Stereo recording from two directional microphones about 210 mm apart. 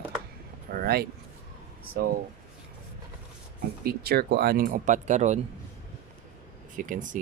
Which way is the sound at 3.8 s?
50° right (ahead or behind).